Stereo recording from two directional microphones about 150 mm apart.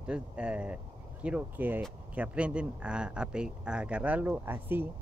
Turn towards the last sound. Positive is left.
turn(degrees=-15)  # may be behind; listen again after turning